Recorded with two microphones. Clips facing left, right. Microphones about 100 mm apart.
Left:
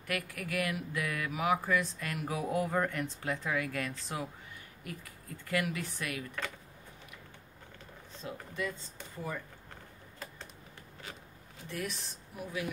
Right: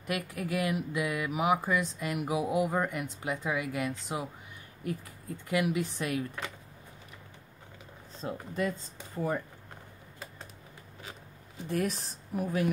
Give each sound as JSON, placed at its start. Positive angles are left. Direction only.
{"t": 0.0, "sound": "speech", "side_deg": -20}
{"t": 5.5, "sound": "speech", "side_deg": -20}
{"t": 8.2, "sound": "speech", "side_deg": -40}
{"t": 11.6, "sound": "speech", "side_deg": -40}